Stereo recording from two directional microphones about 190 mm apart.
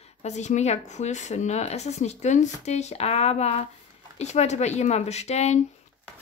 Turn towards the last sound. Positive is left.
turn(degrees=35)  # may be behind; listen again after turning